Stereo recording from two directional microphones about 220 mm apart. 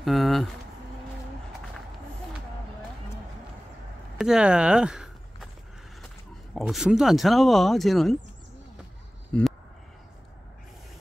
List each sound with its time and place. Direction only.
0.0 s speech: centre (ahead or behind)
4.2 s walk: 5° right (ahead or behind)
6.5 s speech: centre (ahead or behind)
9.3 s speech: 5° left (ahead or behind)